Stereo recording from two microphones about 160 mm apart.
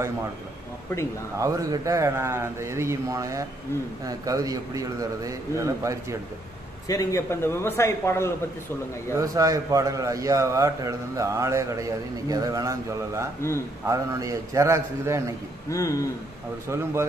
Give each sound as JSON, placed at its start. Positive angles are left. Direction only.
{"t": 1.4, "sound": "a man's voice", "side_deg": -20}
{"t": 6.9, "sound": "a man's voice", "side_deg": 20}
{"t": 9.1, "sound": "a man's voice", "side_deg": -20}
{"t": 15.7, "sound": "speech", "side_deg": 20}
{"t": 16.6, "sound": "speech", "side_deg": -15}